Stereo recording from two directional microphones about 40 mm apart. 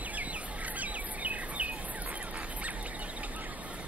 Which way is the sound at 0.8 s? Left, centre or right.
Right.